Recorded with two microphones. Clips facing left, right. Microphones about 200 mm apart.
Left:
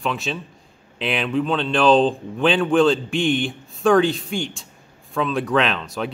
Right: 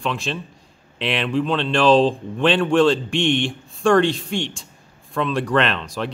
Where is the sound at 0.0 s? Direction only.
Centre (ahead or behind).